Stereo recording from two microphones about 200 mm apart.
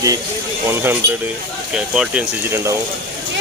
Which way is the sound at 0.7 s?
10° right (ahead or behind).